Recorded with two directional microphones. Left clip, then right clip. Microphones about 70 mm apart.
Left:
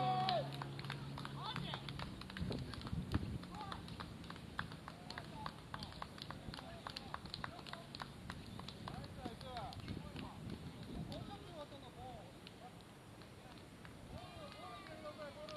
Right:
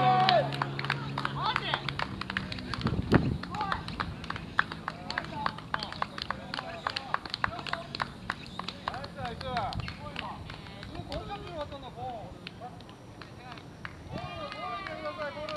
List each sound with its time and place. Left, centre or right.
0.2 s run: right
14.5 s run: right